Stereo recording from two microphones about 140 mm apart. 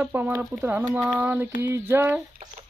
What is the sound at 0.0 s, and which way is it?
Speech, 15° right (ahead or behind).